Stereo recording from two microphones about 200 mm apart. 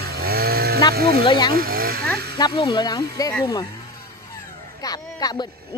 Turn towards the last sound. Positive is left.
turn(degrees=20)  # may be behind; listen again after turning